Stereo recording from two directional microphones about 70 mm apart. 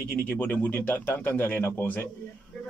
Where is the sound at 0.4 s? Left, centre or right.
Left.